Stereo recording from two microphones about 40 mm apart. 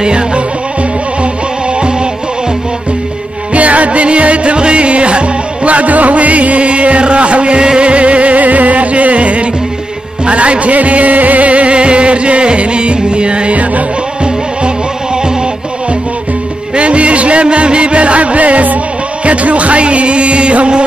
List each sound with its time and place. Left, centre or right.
0.0 s music: right
3.5 s music: right
16.7 s music: right